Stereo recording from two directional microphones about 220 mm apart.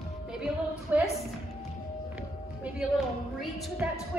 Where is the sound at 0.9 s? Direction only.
5° right (ahead or behind).